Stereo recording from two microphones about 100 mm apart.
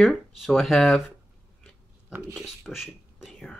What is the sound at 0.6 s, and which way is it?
Speech, centre (ahead or behind).